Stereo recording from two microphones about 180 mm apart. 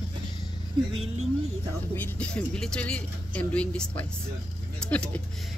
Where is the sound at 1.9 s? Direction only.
10° left (ahead or behind).